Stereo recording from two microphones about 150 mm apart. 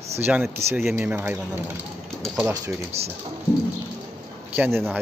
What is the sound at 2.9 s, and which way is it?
Speech, 45° right (ahead or behind).